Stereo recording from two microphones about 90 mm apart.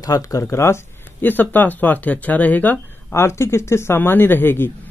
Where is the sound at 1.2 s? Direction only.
20° left (ahead or behind).